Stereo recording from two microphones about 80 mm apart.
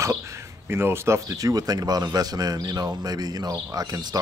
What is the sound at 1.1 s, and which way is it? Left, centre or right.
A man's voice, right.